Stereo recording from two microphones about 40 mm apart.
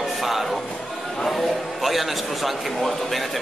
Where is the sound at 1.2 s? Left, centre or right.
Centre.